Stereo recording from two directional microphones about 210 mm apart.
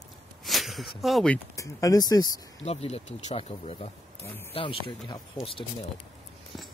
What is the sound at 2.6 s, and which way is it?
Speech, 30° left (ahead or behind).